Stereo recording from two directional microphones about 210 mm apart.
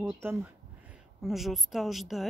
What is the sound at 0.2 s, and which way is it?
A woman's voice, 10° right (ahead or behind).